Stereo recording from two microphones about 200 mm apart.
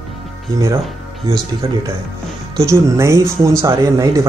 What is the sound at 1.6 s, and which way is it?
Speech, 20° right (ahead or behind).